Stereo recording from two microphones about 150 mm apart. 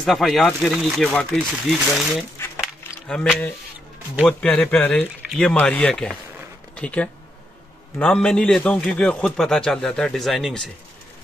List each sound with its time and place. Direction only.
0.0 s a man's voice: centre (ahead or behind)
2.3 s a sound: 20° left (ahead or behind)
3.1 s a man's voice: 5° left (ahead or behind)